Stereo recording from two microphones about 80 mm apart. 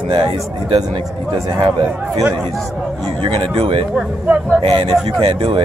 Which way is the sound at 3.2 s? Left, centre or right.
Right.